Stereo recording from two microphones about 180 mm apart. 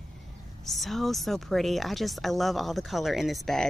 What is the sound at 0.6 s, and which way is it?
Speech, centre (ahead or behind).